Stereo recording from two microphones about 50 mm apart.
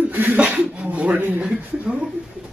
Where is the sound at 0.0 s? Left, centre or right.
Right.